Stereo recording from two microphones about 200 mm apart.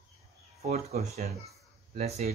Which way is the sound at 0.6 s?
35° right (ahead or behind).